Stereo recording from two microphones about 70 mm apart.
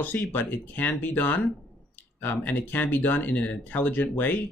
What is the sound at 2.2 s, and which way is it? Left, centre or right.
Speech, left.